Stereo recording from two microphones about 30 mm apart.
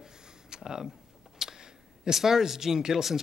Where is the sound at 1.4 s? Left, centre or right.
Centre.